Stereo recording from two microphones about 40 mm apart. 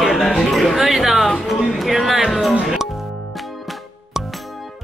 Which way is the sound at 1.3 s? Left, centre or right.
Centre.